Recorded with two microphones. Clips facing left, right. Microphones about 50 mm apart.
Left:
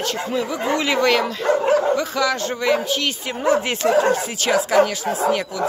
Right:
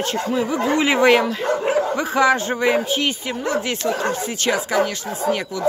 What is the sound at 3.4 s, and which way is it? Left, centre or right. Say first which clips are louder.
Speech: left 4 dB; centre.